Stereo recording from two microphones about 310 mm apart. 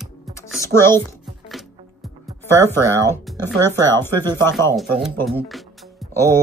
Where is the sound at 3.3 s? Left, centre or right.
Centre.